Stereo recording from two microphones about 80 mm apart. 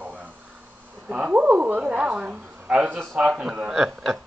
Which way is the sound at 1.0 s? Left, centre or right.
Centre.